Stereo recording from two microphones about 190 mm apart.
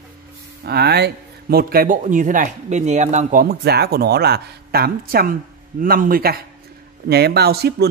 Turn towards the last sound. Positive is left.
turn(degrees=-55)  # may be behind; listen again after turning